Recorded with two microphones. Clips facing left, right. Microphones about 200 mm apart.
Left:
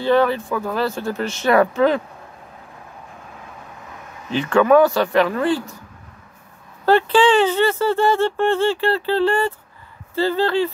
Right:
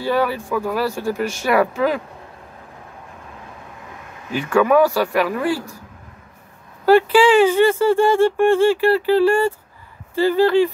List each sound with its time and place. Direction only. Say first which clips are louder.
0.0 s speech: left 3 dB; 10° right (ahead or behind)
4.4 s speech: left 1 dB; 10° right (ahead or behind)
6.9 s speech: right 2 dB; 10° right (ahead or behind)